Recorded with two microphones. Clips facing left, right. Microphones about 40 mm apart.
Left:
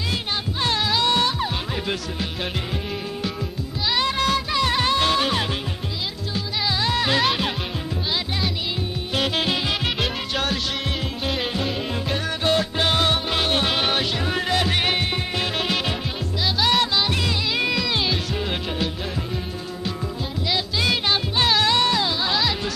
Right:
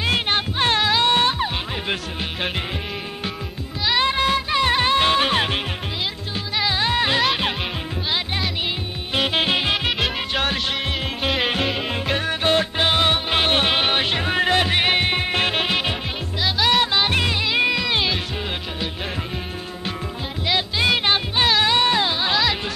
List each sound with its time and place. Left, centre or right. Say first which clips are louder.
0.1 s music: right 5 dB; right
4.0 s music: right 1 dB; right
9.1 s music: right 3 dB; right
9.8 s music: right 2 dB; centre
10.3 s music: right 1 dB; right
11.7 s music: right 2 dB; right
16.5 s music: right 2 dB; centre
16.8 s music: right 2 dB; right
17.5 s music: right 2 dB; right
20.4 s music: right 3 dB; right